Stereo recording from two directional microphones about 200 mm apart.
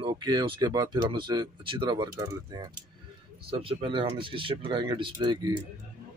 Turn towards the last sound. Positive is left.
turn(degrees=-25)  # may be behind; listen again after turning